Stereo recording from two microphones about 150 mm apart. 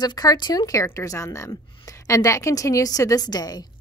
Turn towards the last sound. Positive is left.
turn(degrees=25)  # may be behind; listen again after turning